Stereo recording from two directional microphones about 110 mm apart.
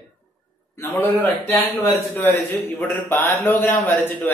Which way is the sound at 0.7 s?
20° left (ahead or behind).